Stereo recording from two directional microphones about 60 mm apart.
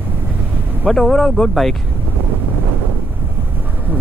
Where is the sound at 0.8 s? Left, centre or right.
Centre.